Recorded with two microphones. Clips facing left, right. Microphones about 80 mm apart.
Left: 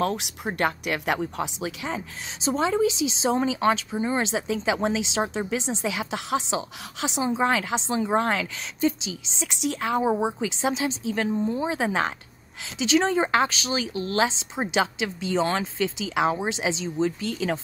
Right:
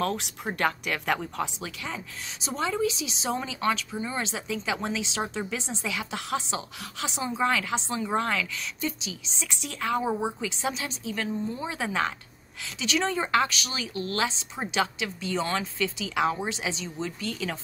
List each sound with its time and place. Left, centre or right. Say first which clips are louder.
0.0 s speech: left 3 dB; centre
1.9 s a woman's voice: left 5 dB; left